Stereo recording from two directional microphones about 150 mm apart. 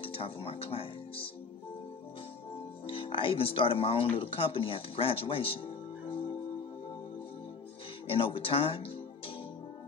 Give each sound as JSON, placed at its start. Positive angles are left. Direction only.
{"t": 0.0, "sound": "speech", "side_deg": 40}
{"t": 2.9, "sound": "speech", "side_deg": 35}
{"t": 8.1, "sound": "speech", "side_deg": 35}